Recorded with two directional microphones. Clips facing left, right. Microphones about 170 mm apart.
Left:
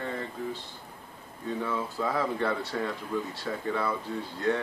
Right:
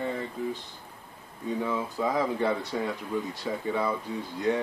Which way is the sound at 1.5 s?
15° right (ahead or behind).